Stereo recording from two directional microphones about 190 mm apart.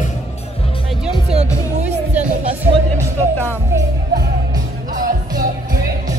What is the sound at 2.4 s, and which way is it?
Music, 35° right (ahead or behind).